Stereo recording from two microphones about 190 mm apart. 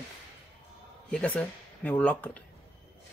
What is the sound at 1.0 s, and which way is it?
Speech, 5° left (ahead or behind).